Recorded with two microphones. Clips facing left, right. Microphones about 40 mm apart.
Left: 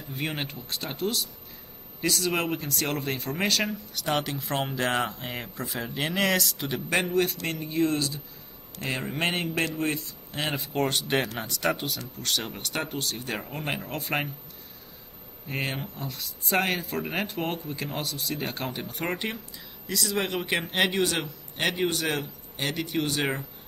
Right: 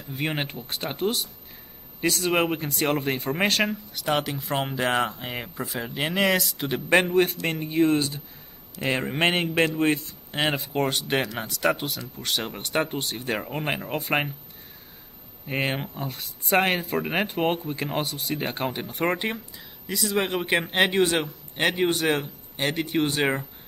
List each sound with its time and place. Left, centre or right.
0.3 s speech: right
2.0 s speech: centre
2.2 s speech: right
3.9 s speech: centre
6.1 s speech: centre
6.5 s speech: centre
8.7 s a man's voice: right
10.5 s speech: centre
12.2 s speech: centre
13.8 s speech: centre
15.4 s speech: right
16.5 s speech: centre